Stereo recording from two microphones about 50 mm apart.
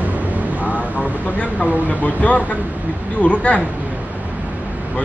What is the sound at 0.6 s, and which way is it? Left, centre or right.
Speech, left.